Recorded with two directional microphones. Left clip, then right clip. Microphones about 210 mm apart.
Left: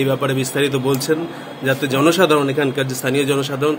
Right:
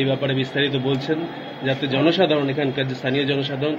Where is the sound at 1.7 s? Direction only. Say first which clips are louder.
Left 4 dB; 25° left (ahead or behind).